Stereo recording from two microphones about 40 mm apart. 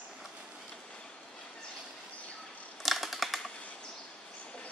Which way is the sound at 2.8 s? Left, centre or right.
Centre.